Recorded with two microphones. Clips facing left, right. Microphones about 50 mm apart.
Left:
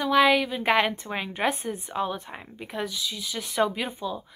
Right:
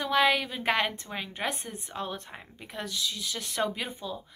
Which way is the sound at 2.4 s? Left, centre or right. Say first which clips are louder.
Left 7 dB; left.